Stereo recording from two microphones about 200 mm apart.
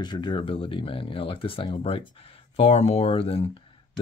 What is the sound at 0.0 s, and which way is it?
Speech, 20° left (ahead or behind).